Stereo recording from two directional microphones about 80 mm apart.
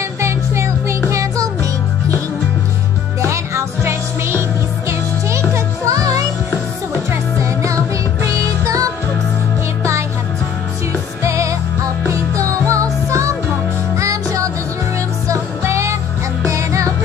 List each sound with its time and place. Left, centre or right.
0.2 s music: right
3.2 s music: right
5.9 s music: right
11.2 s music: right